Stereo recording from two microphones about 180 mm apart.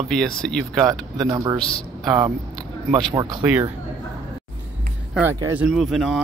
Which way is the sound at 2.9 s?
25° right (ahead or behind).